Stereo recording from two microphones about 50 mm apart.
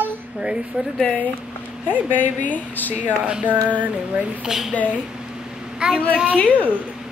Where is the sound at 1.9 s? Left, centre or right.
Left.